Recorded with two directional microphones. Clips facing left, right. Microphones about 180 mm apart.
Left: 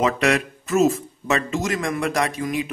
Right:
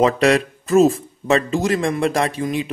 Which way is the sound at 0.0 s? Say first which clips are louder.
Right 5 dB; 35° right (ahead or behind).